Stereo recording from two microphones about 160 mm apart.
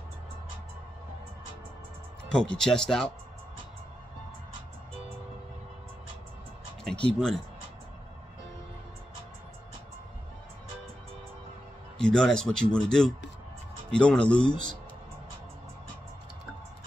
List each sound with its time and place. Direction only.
2.3 s speech: 5° left (ahead or behind)
6.8 s music: 5° left (ahead or behind)
12.0 s speech: 5° left (ahead or behind)
14.4 s a man's voice: 30° left (ahead or behind)